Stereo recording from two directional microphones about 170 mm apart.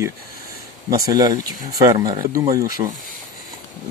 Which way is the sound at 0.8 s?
20° right (ahead or behind).